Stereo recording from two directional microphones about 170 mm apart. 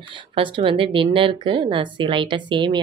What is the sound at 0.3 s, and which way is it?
A woman's voice, 30° right (ahead or behind).